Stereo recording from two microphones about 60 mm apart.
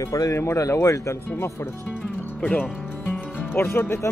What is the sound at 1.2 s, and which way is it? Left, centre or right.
Speech, left.